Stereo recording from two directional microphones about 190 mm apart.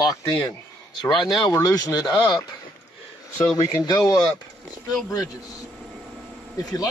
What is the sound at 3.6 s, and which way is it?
Speech, 20° left (ahead or behind).